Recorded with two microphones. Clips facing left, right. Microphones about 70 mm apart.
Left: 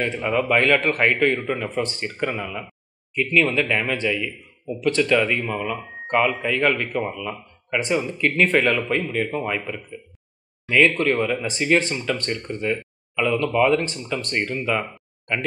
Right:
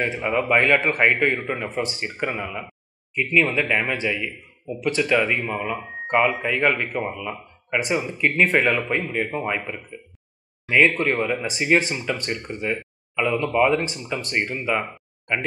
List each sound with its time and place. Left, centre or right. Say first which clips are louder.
0.0 s speech: left 1 dB; centre
10.9 s speech: left 1 dB; centre